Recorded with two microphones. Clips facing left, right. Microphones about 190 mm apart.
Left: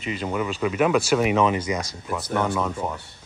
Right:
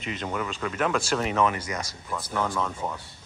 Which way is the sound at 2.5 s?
5° left (ahead or behind).